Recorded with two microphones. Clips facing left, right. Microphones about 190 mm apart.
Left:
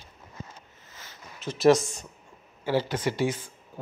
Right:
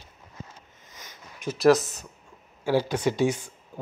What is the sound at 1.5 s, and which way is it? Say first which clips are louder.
Speech: right 1 dB; centre (ahead or behind).